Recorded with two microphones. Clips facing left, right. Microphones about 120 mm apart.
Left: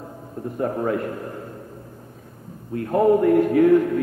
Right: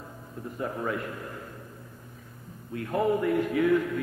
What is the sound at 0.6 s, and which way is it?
Speech, 45° left (ahead or behind).